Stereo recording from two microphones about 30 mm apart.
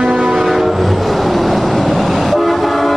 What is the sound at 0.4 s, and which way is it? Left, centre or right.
Vehicle, centre.